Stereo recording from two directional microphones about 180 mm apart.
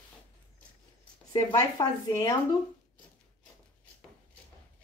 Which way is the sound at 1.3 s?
20° left (ahead or behind).